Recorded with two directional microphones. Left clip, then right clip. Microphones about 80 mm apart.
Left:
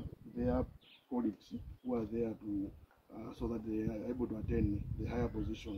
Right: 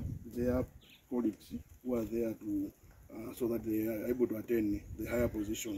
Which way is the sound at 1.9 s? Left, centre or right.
Left.